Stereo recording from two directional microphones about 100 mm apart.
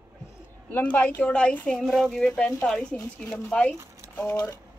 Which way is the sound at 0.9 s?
20° left (ahead or behind).